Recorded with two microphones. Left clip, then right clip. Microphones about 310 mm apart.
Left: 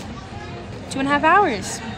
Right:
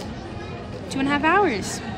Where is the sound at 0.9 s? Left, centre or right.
Centre.